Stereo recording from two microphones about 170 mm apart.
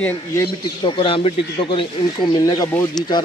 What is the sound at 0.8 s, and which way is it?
Speech, 30° left (ahead or behind).